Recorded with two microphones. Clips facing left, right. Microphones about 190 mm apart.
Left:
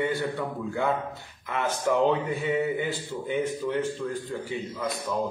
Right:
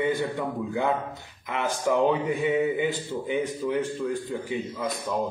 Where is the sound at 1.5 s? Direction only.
15° right (ahead or behind).